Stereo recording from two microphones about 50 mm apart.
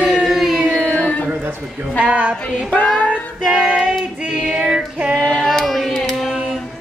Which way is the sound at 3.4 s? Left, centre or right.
Centre.